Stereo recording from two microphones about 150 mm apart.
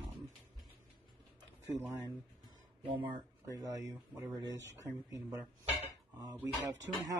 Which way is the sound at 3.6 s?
20° right (ahead or behind).